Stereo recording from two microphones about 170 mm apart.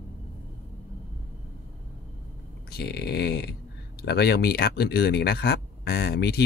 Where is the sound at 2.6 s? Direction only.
75° left (ahead or behind).